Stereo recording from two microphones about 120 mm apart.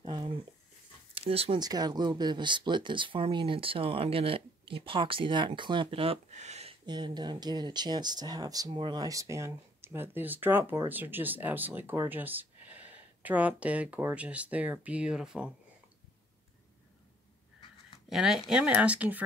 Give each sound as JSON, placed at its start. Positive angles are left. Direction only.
{"t": 0.0, "sound": "speech", "side_deg": -45}
{"t": 1.6, "sound": "speech", "side_deg": -35}
{"t": 6.3, "sound": "a sound", "side_deg": -70}
{"t": 6.9, "sound": "speech", "side_deg": -35}
{"t": 18.1, "sound": "speech", "side_deg": -5}